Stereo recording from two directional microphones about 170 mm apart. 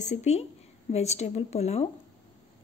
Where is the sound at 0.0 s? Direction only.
45° left (ahead or behind).